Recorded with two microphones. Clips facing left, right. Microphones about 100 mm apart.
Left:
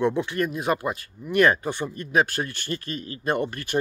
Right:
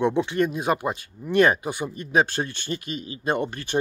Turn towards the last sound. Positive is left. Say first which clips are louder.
# even
turn(degrees=-25)  # may be behind; listen again after turning